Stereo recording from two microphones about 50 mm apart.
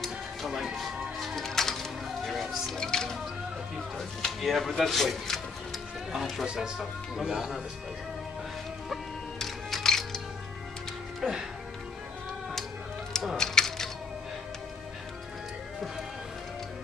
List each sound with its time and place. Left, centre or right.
0.0 s music: centre
2.8 s a sound: centre
4.4 s music: centre
6.4 s speech: centre
8.8 s music: centre
11.2 s music: centre
13.4 s music: centre